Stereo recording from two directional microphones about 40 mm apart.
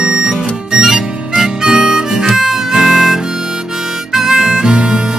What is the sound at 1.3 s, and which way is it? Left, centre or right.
Harmonica, centre.